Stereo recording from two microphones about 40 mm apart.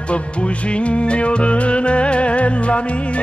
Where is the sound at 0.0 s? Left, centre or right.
Left.